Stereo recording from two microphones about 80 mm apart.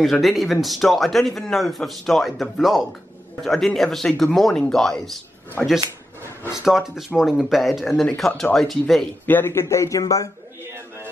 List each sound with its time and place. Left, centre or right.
0.0 s a man's voice: centre
6.6 s a man's voice: centre
9.2 s speech: left